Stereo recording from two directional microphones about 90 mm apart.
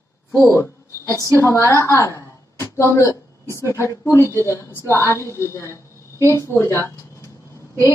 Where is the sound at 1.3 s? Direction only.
25° left (ahead or behind).